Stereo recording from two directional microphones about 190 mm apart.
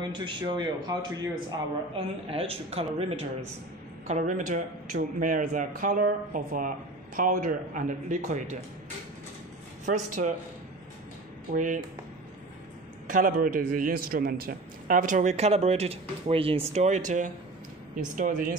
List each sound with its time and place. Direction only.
0.1 s a man's voice: 25° right (ahead or behind); by 8.4 s 45° right (ahead or behind)
9.8 s a man's voice: 40° right (ahead or behind)
11.5 s a man's voice: 45° right (ahead or behind)
13.0 s a man's voice: 45° right (ahead or behind)